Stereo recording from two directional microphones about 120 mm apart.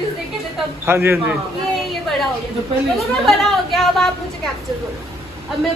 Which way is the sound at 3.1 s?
Centre (ahead or behind).